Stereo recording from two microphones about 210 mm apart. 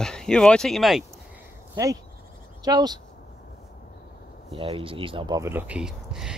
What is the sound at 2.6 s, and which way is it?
Speech, 20° right (ahead or behind).